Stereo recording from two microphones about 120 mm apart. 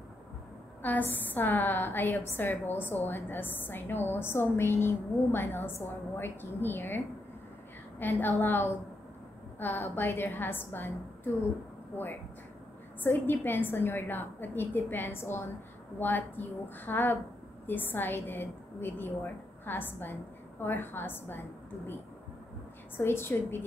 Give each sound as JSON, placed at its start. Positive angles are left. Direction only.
{"t": 0.8, "sound": "a woman's voice", "side_deg": 15}
{"t": 8.0, "sound": "a woman's voice", "side_deg": 15}
{"t": 11.9, "sound": "a woman's voice", "side_deg": 15}
{"t": 22.9, "sound": "a woman's voice", "side_deg": 20}